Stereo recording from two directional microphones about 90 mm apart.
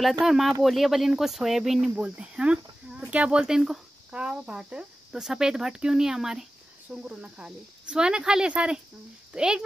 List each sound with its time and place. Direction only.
0.2 s a child's voice: 5° right (ahead or behind)